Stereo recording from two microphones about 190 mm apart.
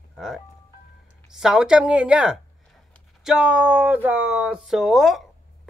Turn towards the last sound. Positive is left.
turn(degrees=0)  # may be behind; listen again after turning